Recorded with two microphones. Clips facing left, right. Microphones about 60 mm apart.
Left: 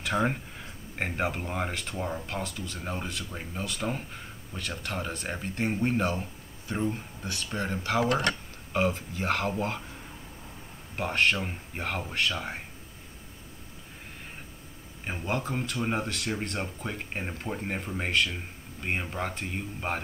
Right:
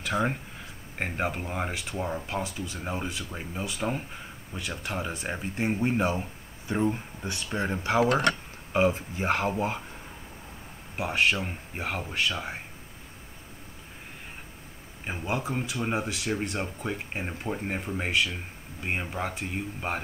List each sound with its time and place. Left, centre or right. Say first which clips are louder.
0.0 s speech: even; centre; by 8.0 s right
8.0 s speech: right 3 dB; right
8.7 s speech: right 3 dB; right
11.0 s speech: even; centre
15.0 s speech: right 1 dB; centre